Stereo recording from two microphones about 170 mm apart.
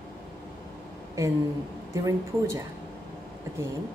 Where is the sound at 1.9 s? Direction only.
20° right (ahead or behind).